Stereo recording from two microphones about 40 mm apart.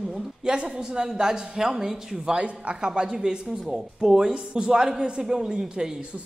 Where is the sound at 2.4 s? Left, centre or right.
Right.